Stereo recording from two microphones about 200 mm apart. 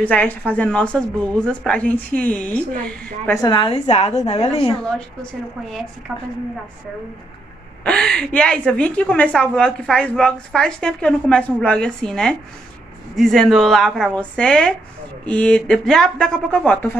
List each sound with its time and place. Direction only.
0.0 s a woman's voice: 10° left (ahead or behind)
3.3 s a woman's voice: 20° left (ahead or behind)
4.8 s a woman's voice: 5° left (ahead or behind)
7.8 s a woman's voice: 5° left (ahead or behind)